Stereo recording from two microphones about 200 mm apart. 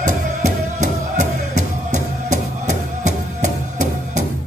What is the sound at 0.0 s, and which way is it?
Music, 40° right (ahead or behind).